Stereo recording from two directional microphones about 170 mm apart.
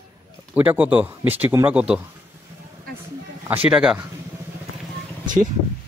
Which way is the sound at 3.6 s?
5° right (ahead or behind).